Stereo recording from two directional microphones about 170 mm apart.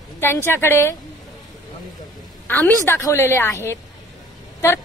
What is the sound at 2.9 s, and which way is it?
A woman's voice, 15° left (ahead or behind).